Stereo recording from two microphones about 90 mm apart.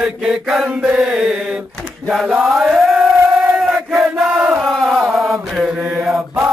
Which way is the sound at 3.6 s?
5° right (ahead or behind).